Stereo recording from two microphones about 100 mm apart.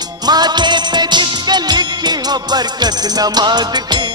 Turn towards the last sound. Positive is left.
turn(degrees=-45)  # may be behind; listen again after turning